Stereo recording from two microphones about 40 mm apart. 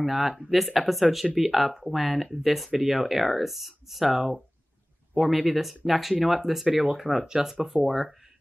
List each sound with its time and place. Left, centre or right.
0.0 s speech: centre
7.2 s speech: centre
7.8 s speech: centre